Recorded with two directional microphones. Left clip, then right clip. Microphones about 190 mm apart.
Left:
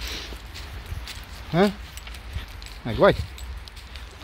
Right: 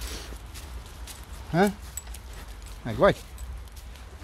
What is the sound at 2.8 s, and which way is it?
Speech, 20° left (ahead or behind).